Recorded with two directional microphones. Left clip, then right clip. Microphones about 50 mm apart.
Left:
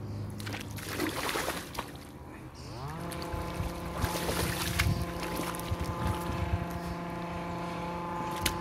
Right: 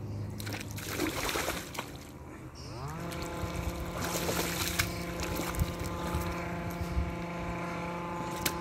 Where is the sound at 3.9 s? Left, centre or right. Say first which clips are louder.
Even; right.